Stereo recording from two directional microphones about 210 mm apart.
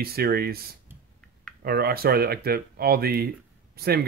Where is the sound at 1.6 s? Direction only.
45° right (ahead or behind).